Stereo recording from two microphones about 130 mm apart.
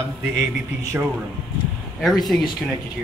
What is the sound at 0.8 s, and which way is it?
Speech, 20° right (ahead or behind).